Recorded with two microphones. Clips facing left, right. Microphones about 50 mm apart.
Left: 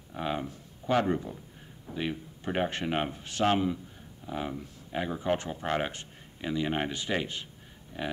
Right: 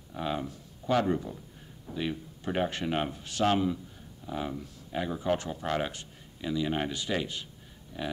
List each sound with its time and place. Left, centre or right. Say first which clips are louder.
0.1 s speech: even; left